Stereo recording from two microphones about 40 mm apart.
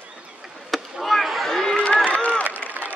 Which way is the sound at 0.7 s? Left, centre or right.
Centre.